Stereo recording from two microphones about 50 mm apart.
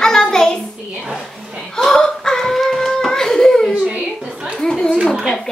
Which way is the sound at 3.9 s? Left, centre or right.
Centre.